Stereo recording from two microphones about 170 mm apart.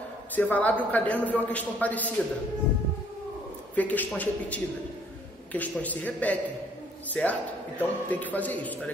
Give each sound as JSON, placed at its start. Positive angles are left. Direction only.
{"t": 0.4, "sound": "a man's voice", "side_deg": 10}
{"t": 3.7, "sound": "a man's voice", "side_deg": 10}